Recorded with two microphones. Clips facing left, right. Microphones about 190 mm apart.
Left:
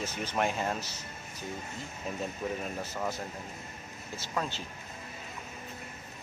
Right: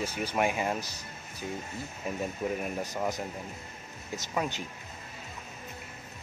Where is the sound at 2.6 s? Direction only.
15° right (ahead or behind).